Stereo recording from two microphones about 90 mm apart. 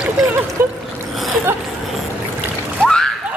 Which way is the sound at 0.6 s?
25° right (ahead or behind).